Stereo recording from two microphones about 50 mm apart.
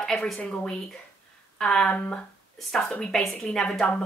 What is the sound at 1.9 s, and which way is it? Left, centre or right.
Speech, left.